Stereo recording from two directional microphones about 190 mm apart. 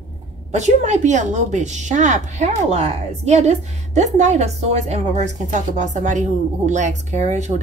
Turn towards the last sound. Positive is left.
turn(degrees=-40)  # may be behind; listen again after turning